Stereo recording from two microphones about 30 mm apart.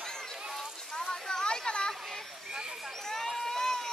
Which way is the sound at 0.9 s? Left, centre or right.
Left.